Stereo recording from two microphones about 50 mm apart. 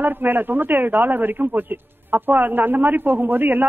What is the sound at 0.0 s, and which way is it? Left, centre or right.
A man's voice, right.